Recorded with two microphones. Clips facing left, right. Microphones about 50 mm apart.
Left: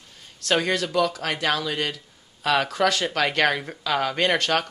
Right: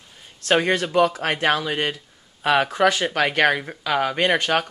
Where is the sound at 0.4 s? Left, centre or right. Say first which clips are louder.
Right 3 dB; right.